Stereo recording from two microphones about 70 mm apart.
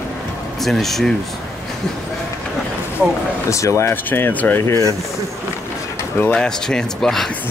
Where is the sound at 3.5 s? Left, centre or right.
Left.